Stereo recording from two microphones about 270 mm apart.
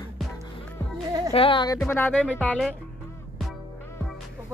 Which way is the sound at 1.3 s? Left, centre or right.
Centre.